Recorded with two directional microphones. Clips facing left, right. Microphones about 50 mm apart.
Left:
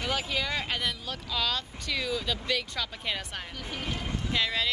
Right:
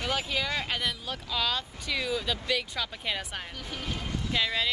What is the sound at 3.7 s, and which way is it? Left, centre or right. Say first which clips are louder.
Speech: left 1 dB; centre.